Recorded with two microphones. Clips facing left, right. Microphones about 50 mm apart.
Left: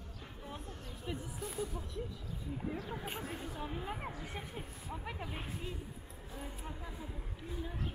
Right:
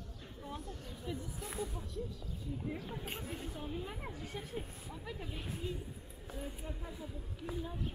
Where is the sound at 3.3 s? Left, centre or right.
Centre.